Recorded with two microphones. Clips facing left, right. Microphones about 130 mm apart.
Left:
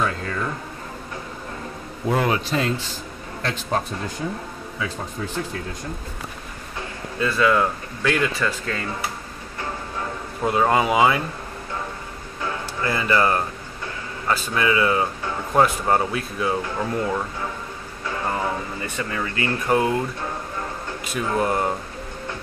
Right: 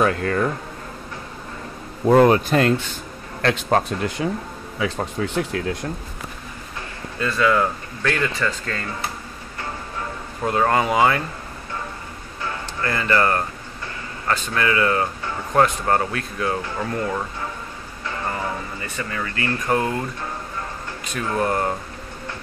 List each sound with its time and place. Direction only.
0.0 s speech: 60° right (ahead or behind)
2.0 s speech: 40° right (ahead or behind)
3.4 s speech: 75° right (ahead or behind)
7.2 s speech: 5° left (ahead or behind)
10.4 s speech: 10° left (ahead or behind)
12.8 s speech: 15° left (ahead or behind)
18.9 s speech: 20° left (ahead or behind)
21.1 s speech: 10° left (ahead or behind)